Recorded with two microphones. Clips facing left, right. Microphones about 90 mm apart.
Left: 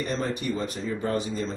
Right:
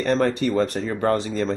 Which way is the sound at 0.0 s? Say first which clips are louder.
Right 8 dB; 70° right (ahead or behind).